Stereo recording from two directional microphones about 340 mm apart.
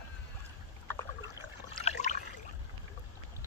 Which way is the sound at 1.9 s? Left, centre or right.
Left.